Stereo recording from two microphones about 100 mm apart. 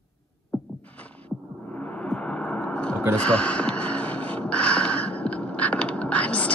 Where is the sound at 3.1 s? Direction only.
10° left (ahead or behind).